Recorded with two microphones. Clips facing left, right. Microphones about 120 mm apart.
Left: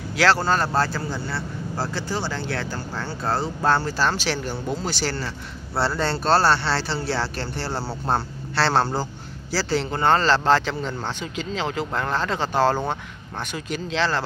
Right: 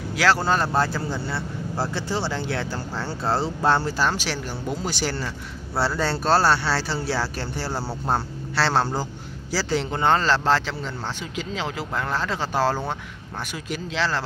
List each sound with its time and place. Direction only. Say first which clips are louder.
0.1 s speech: left 1 dB; 5° right (ahead or behind)